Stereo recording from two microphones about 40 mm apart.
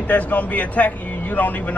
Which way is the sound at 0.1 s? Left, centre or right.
Left.